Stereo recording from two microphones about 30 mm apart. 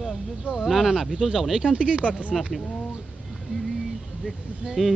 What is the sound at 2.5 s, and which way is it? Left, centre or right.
Speech, centre.